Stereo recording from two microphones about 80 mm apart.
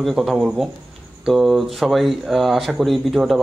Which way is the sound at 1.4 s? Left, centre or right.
Centre.